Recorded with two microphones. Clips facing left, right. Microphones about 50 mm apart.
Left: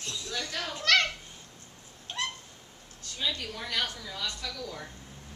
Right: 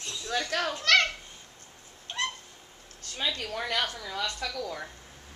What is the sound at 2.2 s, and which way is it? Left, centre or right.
Owl, centre.